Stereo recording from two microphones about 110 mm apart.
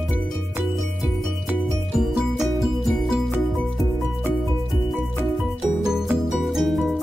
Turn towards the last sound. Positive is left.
turn(degrees=0)  # may be behind; listen again after turning